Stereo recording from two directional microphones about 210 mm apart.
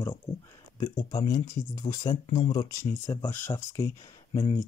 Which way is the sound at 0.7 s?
20° left (ahead or behind).